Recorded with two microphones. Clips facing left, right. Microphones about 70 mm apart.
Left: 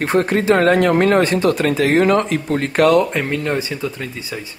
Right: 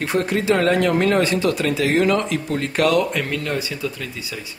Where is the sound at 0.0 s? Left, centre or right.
Left.